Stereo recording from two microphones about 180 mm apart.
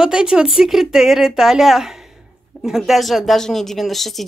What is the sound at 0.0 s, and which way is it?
A woman's voice, 5° right (ahead or behind).